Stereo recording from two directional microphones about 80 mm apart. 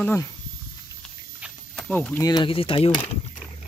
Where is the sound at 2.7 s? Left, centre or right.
Left.